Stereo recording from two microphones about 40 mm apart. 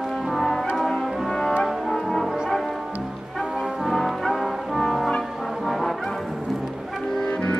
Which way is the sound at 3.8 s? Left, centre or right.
Centre.